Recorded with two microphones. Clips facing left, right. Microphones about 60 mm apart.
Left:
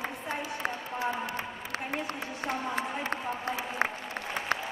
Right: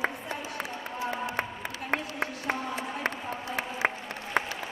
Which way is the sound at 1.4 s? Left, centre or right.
Right.